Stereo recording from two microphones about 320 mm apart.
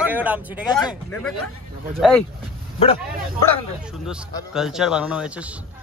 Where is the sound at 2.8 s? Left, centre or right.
Centre.